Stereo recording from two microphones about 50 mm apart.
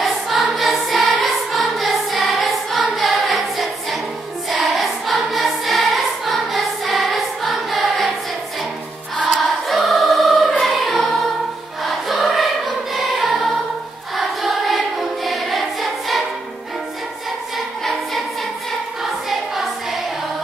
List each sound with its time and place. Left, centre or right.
0.0 s choir: centre
9.3 s choir: centre
10.6 s music: centre
14.1 s choir: centre
19.2 s choir: centre